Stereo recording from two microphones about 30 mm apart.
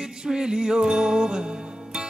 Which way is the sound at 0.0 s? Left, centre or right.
Right.